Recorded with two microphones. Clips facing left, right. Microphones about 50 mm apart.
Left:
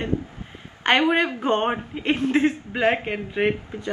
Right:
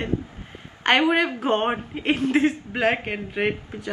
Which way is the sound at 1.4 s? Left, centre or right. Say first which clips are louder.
Even; centre.